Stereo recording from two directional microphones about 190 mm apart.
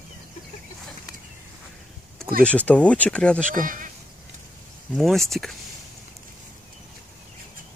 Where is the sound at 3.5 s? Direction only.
45° right (ahead or behind).